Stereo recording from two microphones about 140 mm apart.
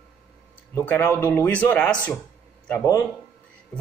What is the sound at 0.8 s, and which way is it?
A man's voice, 15° left (ahead or behind).